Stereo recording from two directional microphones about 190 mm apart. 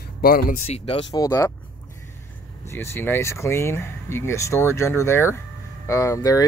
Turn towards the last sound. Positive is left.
turn(degrees=15)  # may be behind; listen again after turning